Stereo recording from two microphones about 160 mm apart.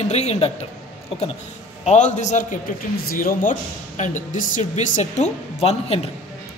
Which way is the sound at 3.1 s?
60° left (ahead or behind).